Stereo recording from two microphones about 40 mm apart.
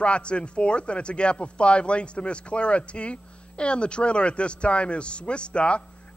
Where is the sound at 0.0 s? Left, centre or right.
Left.